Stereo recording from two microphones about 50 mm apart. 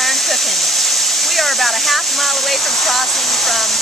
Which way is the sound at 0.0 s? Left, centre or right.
Centre.